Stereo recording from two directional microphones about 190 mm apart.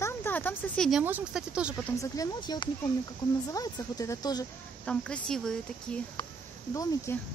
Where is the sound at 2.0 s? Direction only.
20° left (ahead or behind).